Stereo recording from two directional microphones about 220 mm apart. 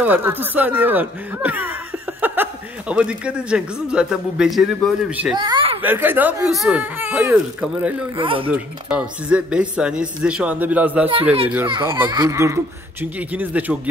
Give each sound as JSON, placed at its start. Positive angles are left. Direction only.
{"t": 0.0, "sound": "a man's voice", "side_deg": -10}
{"t": 5.3, "sound": "a sound", "side_deg": -20}
{"t": 5.8, "sound": "speech", "side_deg": -10}
{"t": 8.2, "sound": "speech", "side_deg": -25}
{"t": 8.5, "sound": "a man's voice", "side_deg": -5}
{"t": 11.6, "sound": "speech", "side_deg": -20}